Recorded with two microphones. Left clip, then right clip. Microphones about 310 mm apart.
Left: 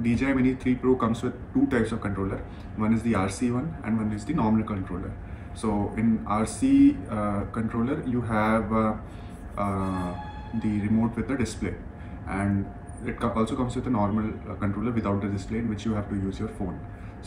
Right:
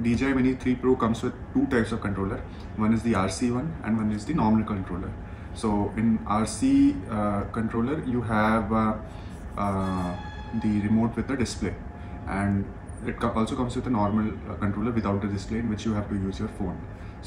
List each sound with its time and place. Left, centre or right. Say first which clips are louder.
0.0 s a man's voice: even; centre